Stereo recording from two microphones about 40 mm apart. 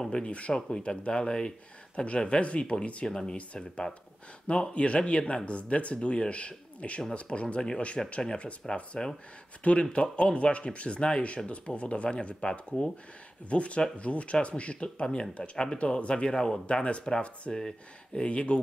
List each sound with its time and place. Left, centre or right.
0.0 s speech: left
0.7 s speech: centre
3.1 s speech: left
4.5 s speech: left
9.6 s speech: left; by 16.6 s centre
16.6 s speech: left
17.6 s speech: centre
18.2 s speech: left